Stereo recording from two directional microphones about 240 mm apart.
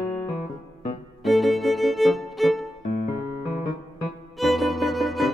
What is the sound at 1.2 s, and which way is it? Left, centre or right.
Music, centre.